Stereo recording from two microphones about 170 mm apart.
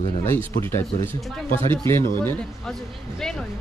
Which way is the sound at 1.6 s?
15° left (ahead or behind).